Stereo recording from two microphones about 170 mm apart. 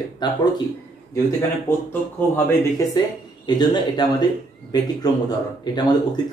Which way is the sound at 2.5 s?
20° left (ahead or behind).